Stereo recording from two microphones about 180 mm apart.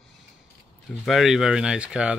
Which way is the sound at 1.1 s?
Centre (ahead or behind).